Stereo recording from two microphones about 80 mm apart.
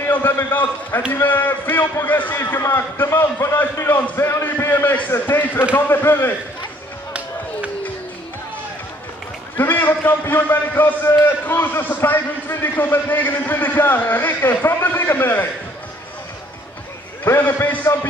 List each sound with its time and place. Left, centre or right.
0.0 s a man's voice: left
4.2 s a sound: left
5.9 s a man's voice: left
9.6 s a man's voice: left
17.2 s a man's voice: left